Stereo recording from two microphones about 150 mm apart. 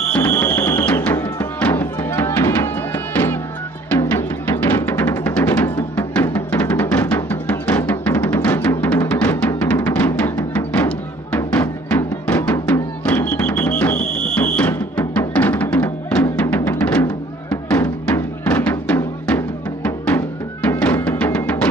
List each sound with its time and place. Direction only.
0.1 s music: 15° left (ahead or behind)
4.6 s music: 15° left (ahead or behind)